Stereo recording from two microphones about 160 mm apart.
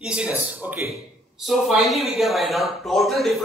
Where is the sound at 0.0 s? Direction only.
5° right (ahead or behind).